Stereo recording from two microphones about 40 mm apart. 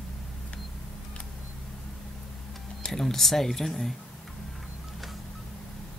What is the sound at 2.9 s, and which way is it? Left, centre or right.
Speech, centre.